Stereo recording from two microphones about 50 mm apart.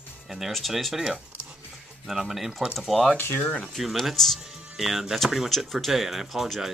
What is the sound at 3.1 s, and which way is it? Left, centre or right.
Speech, left.